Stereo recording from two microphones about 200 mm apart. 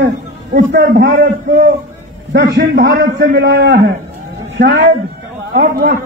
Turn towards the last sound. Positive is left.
turn(degrees=-50)  # may be behind; listen again after turning